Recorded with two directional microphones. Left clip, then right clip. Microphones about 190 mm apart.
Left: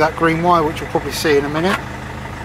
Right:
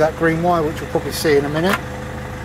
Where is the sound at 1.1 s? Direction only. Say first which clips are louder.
Even; 15° right (ahead or behind).